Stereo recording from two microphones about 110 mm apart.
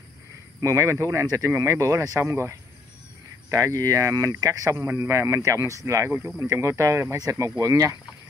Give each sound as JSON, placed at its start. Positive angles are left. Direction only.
{"t": 0.6, "sound": "speech", "side_deg": -30}